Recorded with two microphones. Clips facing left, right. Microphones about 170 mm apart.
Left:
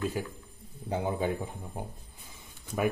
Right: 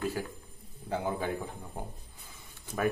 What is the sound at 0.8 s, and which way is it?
Speech, 20° left (ahead or behind).